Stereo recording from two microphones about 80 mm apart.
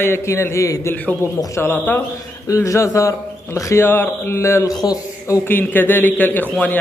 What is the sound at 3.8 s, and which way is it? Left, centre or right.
Speech, left.